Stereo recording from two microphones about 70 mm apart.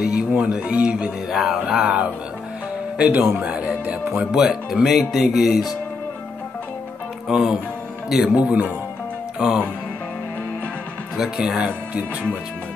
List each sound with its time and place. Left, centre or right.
0.0 s speech: centre
7.2 s speech: centre
11.1 s speech: centre